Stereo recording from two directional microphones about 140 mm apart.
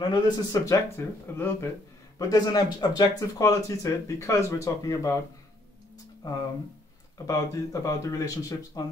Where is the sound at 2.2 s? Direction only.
25° left (ahead or behind).